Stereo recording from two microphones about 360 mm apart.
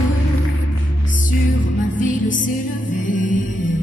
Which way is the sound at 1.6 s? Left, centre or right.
Left.